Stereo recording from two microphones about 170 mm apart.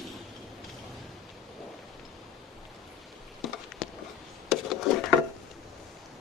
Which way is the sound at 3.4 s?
Centre (ahead or behind).